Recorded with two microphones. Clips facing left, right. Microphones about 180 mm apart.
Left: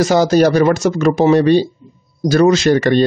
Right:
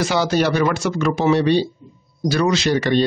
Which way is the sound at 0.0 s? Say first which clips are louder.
Left 7 dB; 40° left (ahead or behind).